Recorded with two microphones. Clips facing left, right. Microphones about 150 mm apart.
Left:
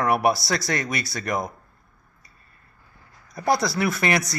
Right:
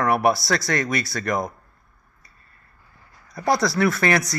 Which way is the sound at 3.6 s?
25° left (ahead or behind).